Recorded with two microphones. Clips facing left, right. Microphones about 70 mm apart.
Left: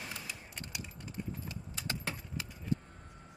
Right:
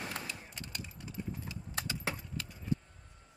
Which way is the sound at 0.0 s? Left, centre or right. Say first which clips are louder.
Right 4 dB; right.